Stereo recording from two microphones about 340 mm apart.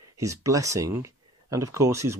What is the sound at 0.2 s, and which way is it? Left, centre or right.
Speech, centre.